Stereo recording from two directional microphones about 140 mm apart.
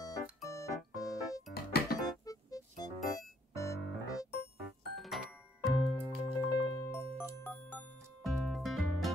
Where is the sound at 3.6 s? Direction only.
25° left (ahead or behind).